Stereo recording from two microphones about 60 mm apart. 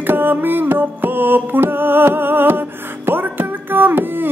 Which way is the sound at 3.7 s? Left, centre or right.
Right.